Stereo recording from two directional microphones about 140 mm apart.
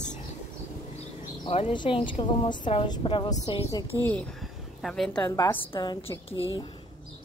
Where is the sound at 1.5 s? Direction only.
40° left (ahead or behind).